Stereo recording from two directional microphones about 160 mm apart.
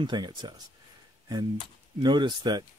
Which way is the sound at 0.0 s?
30° right (ahead or behind).